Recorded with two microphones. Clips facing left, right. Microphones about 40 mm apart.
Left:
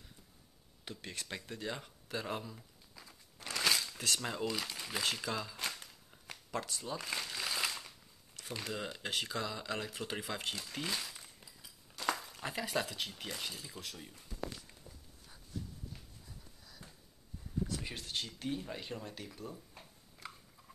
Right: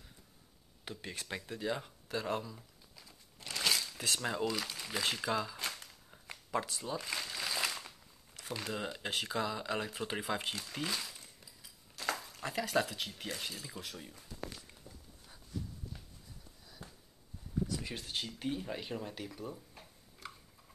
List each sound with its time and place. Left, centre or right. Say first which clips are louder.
0.8 s speech: right 2 dB; centre
3.5 s a sound: left 1 dB; centre
4.0 s speech: right 2 dB; centre
5.1 s speech: right 4 dB; centre
6.2 s a sound: right 4 dB; centre
6.7 s speech: right 2 dB; centre
7.1 s crumpling: even; centre
8.4 s speech: right 2 dB; centre
17.9 s speech: right 1 dB; centre
19.7 s a sound: even; centre